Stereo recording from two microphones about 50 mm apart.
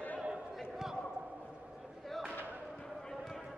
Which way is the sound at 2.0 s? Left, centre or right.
Centre.